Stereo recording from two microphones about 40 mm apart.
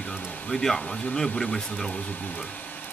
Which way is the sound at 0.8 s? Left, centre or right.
Left.